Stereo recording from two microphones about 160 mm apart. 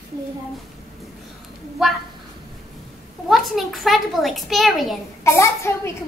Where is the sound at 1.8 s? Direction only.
Centre (ahead or behind).